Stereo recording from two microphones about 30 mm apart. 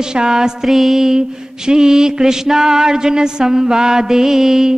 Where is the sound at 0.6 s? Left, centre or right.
Centre.